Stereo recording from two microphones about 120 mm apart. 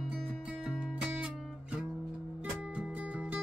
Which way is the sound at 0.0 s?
10° right (ahead or behind).